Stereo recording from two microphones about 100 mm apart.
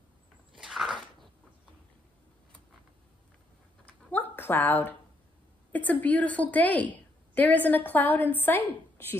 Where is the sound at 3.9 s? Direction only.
20° left (ahead or behind).